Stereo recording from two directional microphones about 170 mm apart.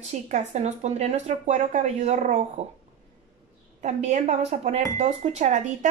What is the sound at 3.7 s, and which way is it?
Speech, 40° right (ahead or behind).